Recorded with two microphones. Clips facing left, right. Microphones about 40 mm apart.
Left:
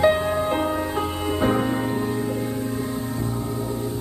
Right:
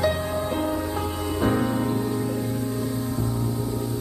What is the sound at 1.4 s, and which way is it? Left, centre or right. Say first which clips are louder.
Music: left 1 dB; left.